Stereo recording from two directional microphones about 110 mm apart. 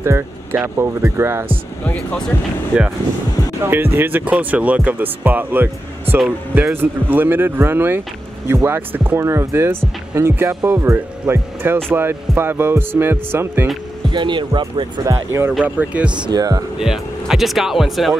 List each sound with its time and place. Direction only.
0.0 s a sound: 25° right (ahead or behind)
0.7 s speech: 25° right (ahead or behind)
1.9 s speech: 15° left (ahead or behind)
2.7 s speech: 5° right (ahead or behind)
3.6 s speech: 20° right (ahead or behind)
14.1 s speech: 45° right (ahead or behind)
15.0 s speech: 25° right (ahead or behind)
15.6 s speech: 15° right (ahead or behind)
16.3 s speech: 35° right (ahead or behind)
16.7 s speech: 5° right (ahead or behind)